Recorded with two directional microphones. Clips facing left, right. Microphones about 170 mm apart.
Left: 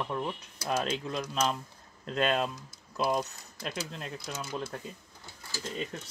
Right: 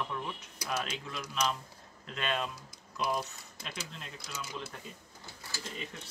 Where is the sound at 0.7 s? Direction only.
35° left (ahead or behind).